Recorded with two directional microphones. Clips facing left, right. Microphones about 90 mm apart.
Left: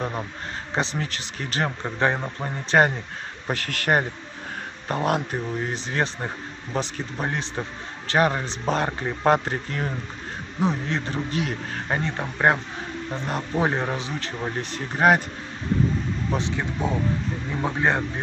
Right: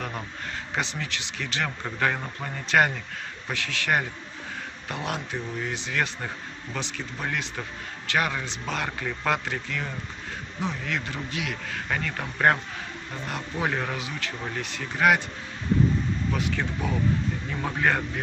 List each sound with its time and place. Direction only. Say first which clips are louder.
0.7 s speech: left 4 dB; 35° left (ahead or behind)
1.8 s a man's voice: left 3 dB; 25° left (ahead or behind)
3.4 s a man's voice: left 4 dB; 45° left (ahead or behind)
16.3 s a man's voice: left 2 dB; 30° left (ahead or behind)